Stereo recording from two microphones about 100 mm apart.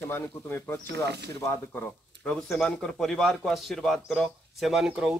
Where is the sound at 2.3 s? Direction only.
Centre (ahead or behind).